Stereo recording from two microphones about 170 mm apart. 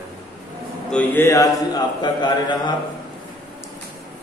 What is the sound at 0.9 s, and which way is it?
Speech, 10° left (ahead or behind).